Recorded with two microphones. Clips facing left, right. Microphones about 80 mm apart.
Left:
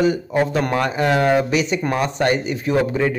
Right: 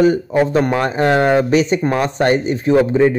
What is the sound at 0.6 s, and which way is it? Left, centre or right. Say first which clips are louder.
Speech: right 3 dB; right.